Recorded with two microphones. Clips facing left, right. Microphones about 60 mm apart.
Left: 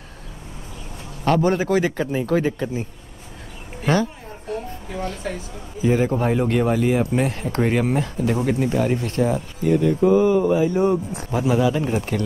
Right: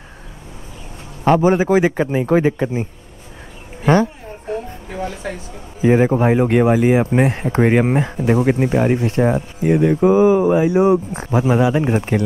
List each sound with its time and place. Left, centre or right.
1.2 s a man's voice: centre; by 2.9 s right
3.8 s a sound: right
5.9 s speech: right
10.1 s a man's voice: centre
11.1 s speech: right